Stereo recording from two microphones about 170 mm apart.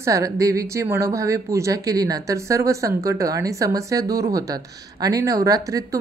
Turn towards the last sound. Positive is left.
turn(degrees=-20)  # may be behind; listen again after turning